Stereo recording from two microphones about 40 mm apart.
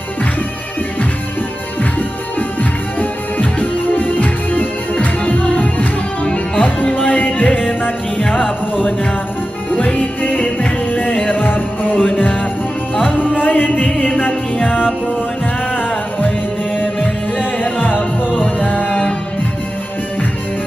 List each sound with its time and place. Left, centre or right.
2.3 s music: left
7.2 s music: left
9.8 s music: left
16.2 s music: left